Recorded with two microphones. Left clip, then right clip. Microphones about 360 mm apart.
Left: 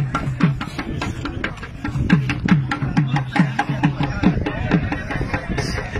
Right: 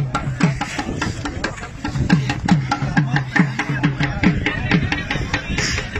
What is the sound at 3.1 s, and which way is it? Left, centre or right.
Music, left.